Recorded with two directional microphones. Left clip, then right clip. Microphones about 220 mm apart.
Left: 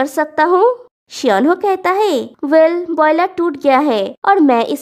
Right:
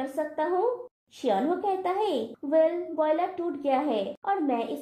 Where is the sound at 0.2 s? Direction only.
35° left (ahead or behind).